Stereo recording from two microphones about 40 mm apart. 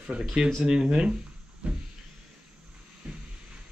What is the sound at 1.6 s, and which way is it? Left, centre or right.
Speech, right.